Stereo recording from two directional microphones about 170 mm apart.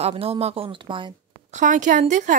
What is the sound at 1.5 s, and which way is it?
Speech, 45° right (ahead or behind).